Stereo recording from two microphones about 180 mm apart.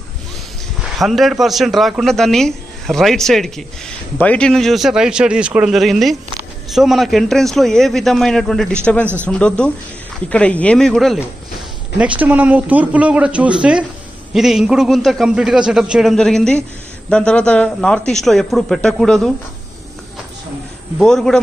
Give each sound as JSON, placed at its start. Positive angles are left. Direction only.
{"t": 0.9, "sound": "speech", "side_deg": 0}
{"t": 9.0, "sound": "speech", "side_deg": -10}
{"t": 9.3, "sound": "speech", "side_deg": 5}
{"t": 21.0, "sound": "speech", "side_deg": 5}